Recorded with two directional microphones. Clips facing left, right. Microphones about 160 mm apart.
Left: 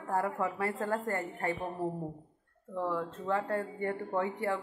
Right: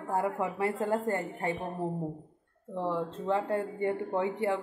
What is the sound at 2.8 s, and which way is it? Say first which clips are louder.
Speech: right 2 dB; 25° right (ahead or behind).